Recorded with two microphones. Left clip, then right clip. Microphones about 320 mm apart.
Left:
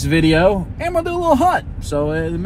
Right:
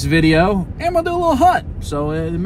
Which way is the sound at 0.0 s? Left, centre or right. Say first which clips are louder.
Even; centre.